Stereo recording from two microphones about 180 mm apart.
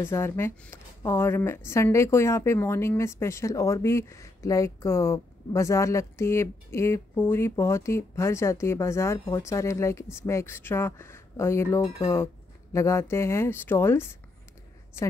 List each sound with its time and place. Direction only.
0.0 s a woman's voice: 15° left (ahead or behind)